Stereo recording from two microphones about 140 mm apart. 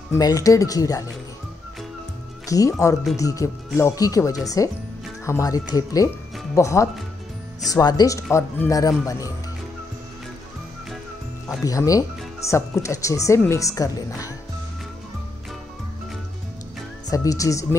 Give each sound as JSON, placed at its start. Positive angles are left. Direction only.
{"t": 0.1, "sound": "speech", "side_deg": 25}
{"t": 2.4, "sound": "speech", "side_deg": 25}
{"t": 11.4, "sound": "speech", "side_deg": 25}
{"t": 17.1, "sound": "speech", "side_deg": 25}